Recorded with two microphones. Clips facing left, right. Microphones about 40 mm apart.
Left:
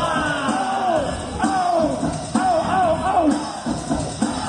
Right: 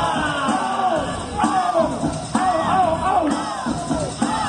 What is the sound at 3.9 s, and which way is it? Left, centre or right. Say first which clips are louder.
Music: even; right.